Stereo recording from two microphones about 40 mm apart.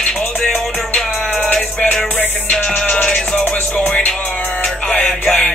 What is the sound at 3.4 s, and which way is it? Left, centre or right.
Music, left.